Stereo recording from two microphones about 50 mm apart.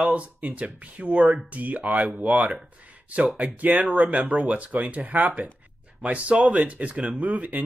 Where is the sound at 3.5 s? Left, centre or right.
Right.